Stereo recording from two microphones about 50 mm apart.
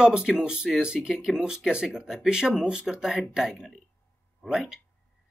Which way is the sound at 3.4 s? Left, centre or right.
Centre.